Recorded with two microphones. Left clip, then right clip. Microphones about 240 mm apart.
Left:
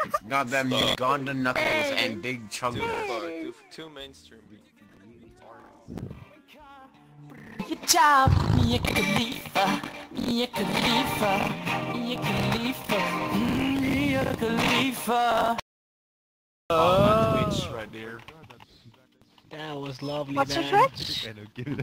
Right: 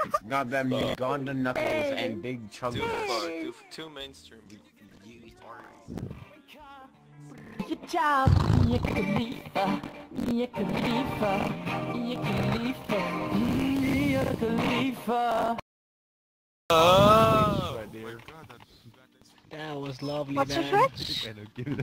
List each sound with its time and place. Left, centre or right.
0.0 s a sound: centre
0.4 s music: left
2.2 s speech: left
2.7 s speech: centre
5.9 s music: centre
7.3 s music: centre
7.8 s music: left
8.4 s speech: centre
8.6 s speech: left
11.2 s music: left
13.8 s speech: left
16.6 s a sound: right
17.6 s a sound: left
19.5 s speech: centre